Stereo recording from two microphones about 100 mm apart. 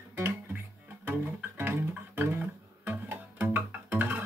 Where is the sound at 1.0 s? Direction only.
20° right (ahead or behind).